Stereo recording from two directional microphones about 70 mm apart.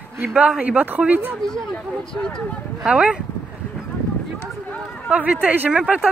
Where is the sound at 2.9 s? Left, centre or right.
Centre.